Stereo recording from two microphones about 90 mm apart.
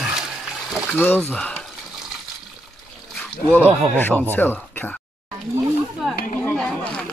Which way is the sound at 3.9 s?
20° left (ahead or behind).